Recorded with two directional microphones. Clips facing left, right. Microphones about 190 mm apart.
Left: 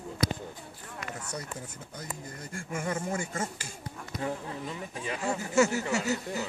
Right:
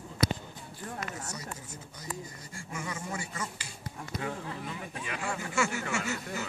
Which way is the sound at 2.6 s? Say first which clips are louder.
Left 6 dB; 50° left (ahead or behind).